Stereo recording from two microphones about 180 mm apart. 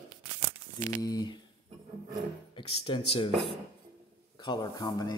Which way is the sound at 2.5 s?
30° left (ahead or behind).